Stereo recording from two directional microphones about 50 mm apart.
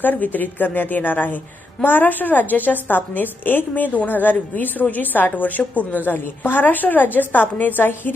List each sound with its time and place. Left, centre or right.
0.0 s a woman's voice: left